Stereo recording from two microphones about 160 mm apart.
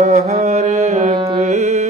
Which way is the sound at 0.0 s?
45° right (ahead or behind).